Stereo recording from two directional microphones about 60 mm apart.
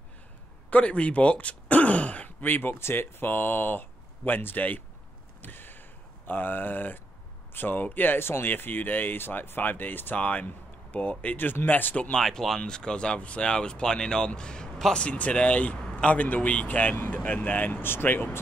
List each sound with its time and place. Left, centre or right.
0.7 s speech: left
5.4 s a sound: left
7.5 s speech: left
12.2 s speech: centre; by 18.2 s left